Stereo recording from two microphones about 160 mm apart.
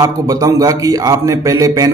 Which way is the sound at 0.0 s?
20° right (ahead or behind).